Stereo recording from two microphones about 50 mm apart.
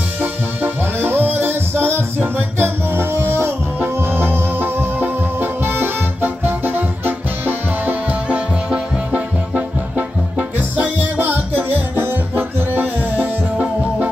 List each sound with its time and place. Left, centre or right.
0.2 s music: right
11.0 s music: right